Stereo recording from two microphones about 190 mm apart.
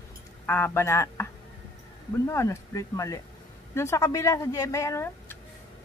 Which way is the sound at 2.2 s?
15° left (ahead or behind).